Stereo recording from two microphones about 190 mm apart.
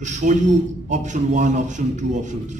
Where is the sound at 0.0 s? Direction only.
40° right (ahead or behind).